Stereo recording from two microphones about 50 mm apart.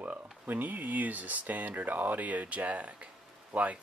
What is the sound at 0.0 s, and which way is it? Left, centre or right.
Speech, right.